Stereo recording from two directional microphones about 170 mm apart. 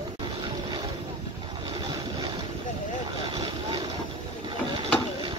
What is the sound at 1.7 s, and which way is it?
Vehicle, 25° right (ahead or behind).